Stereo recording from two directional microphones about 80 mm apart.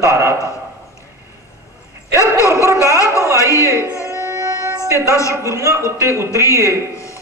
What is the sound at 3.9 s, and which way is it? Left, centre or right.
Music, left.